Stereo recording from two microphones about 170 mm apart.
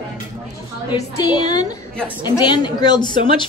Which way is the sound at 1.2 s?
25° left (ahead or behind).